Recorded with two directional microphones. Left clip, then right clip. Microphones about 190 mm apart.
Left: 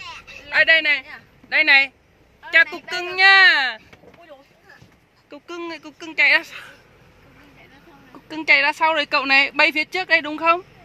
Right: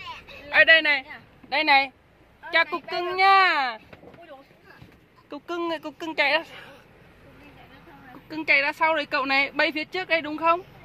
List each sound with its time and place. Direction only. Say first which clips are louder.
0.5 s speech: left 1 dB; 10° right (ahead or behind)
5.3 s speech: right 3 dB; 25° right (ahead or behind)
8.3 s speech: left 5 dB; 15° left (ahead or behind)